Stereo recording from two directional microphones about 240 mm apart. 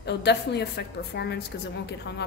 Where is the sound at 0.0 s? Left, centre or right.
Left.